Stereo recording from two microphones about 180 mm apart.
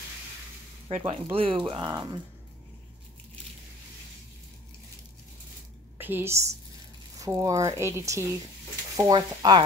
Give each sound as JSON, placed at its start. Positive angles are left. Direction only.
{"t": 0.8, "sound": "speech", "side_deg": -40}
{"t": 5.9, "sound": "a woman's voice", "side_deg": -10}